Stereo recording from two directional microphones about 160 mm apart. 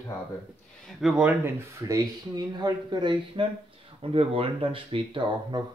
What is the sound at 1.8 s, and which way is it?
Speech, 20° right (ahead or behind).